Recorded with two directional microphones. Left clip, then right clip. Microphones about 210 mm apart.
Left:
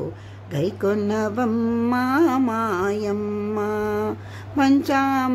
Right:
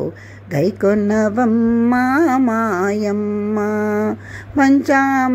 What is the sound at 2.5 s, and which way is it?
Mantra, 20° right (ahead or behind).